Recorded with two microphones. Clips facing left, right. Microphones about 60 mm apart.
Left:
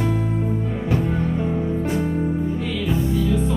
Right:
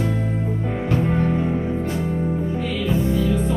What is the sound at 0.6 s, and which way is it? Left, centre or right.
Music, right.